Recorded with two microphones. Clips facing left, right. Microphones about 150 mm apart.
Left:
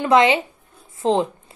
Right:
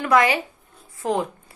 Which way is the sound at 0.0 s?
25° left (ahead or behind).